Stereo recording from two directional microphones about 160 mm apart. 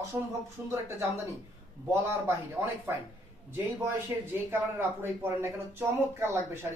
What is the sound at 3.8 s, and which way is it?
Speech, 15° right (ahead or behind).